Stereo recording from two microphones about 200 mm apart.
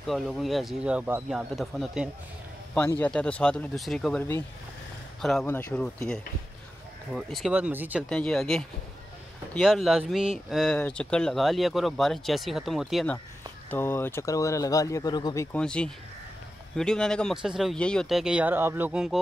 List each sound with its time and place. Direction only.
0.0 s speech: centre (ahead or behind)
5.2 s speech: centre (ahead or behind)
7.2 s speech: centre (ahead or behind)
8.1 s speech: 5° left (ahead or behind); by 15.4 s 20° left (ahead or behind)
15.5 s speech: 5° left (ahead or behind)